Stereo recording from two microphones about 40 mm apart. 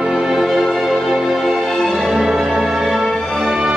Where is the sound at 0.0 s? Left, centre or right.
Centre.